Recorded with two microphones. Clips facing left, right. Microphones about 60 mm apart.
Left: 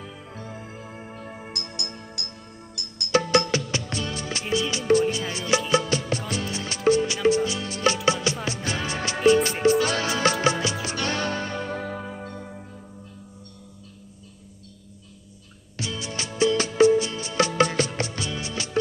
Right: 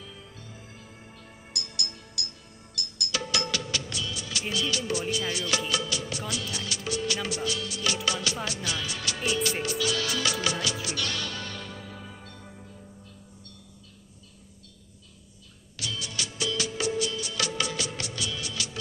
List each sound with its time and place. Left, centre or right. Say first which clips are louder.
0.0 s music: left 7 dB; left
11.7 s music: left 11 dB; left
15.7 s music: left 4 dB; left